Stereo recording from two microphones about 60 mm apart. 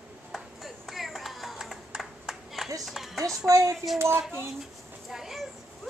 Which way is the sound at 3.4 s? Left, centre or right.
Right.